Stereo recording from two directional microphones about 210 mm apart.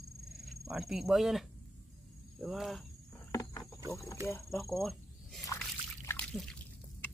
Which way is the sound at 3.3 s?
15° left (ahead or behind).